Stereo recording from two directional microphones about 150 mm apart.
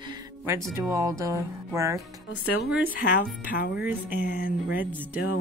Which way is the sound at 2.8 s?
75° left (ahead or behind).